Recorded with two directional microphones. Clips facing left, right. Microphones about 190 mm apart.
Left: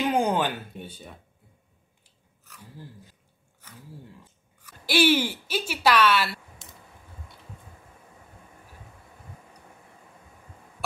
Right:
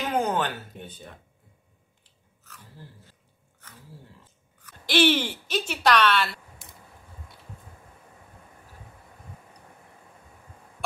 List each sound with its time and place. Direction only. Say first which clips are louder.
0.1 s speech: left 2 dB; 10° left (ahead or behind)
2.4 s speech: left 3 dB; 15° left (ahead or behind)
4.6 s speech: even; 10° left (ahead or behind)